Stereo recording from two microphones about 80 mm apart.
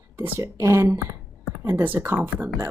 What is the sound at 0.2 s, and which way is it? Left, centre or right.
A woman's voice, right.